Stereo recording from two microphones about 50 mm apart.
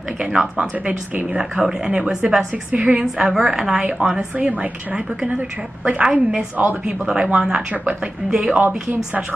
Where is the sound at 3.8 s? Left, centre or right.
Right.